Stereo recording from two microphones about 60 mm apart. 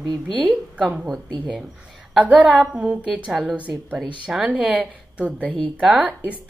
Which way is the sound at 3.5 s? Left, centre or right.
Right.